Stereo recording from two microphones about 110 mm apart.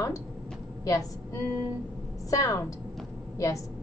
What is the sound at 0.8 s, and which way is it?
A woman's voice, 30° left (ahead or behind).